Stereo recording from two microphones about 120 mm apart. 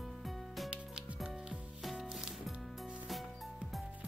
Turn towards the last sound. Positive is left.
turn(degrees=0)  # may be behind; listen again after turning